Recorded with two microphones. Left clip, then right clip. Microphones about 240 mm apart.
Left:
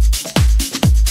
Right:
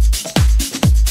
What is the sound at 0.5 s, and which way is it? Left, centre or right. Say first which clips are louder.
Music: left 1 dB; left.